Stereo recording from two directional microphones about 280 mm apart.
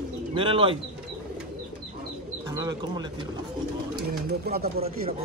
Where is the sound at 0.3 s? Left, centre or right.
Centre.